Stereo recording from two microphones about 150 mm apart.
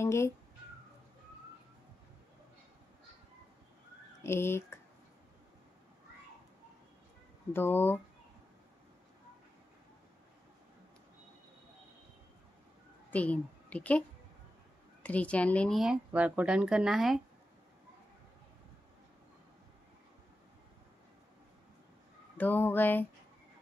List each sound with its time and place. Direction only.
0.0 s speech: 20° left (ahead or behind)
4.2 s speech: 15° left (ahead or behind)
7.5 s a sound: 15° left (ahead or behind)
13.1 s a woman's voice: 10° left (ahead or behind)
15.0 s speech: 10° left (ahead or behind)
22.4 s a sound: 15° left (ahead or behind)